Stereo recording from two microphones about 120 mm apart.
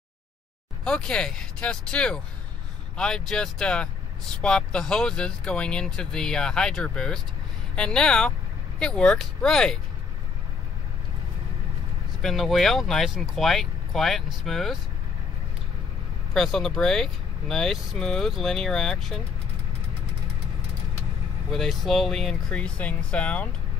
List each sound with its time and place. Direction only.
0.8 s speech: 5° left (ahead or behind)
12.2 s speech: centre (ahead or behind)
16.3 s speech: 5° left (ahead or behind)
21.5 s speech: centre (ahead or behind)